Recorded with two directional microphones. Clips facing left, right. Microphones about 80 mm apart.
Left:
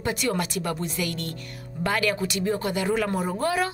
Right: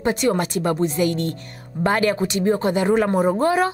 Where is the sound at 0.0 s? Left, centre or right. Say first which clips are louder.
Right 6 dB; right.